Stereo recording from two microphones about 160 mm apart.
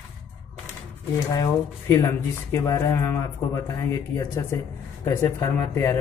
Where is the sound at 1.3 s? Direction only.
20° left (ahead or behind).